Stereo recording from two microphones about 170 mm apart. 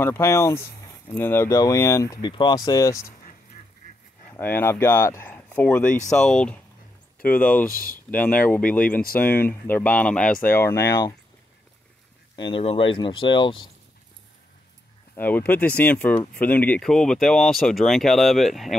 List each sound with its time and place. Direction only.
0.0 s speech: 15° left (ahead or behind)
4.3 s speech: 10° left (ahead or behind)
7.2 s speech: 55° left (ahead or behind)
8.1 s speech: 10° left (ahead or behind)
12.4 s speech: 30° left (ahead or behind)
15.1 s speech: 10° left (ahead or behind)